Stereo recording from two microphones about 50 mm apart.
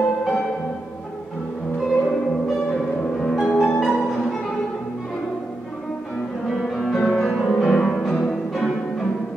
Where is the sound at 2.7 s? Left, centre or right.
Centre.